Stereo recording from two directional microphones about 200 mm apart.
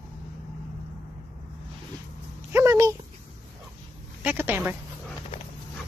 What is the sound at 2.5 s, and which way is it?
Dog, 15° right (ahead or behind).